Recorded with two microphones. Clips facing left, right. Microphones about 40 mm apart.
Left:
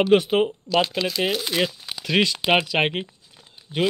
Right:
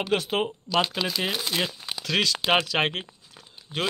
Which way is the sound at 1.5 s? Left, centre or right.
Centre.